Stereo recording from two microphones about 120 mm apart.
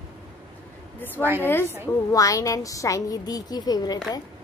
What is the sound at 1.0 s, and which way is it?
Speech, 15° left (ahead or behind).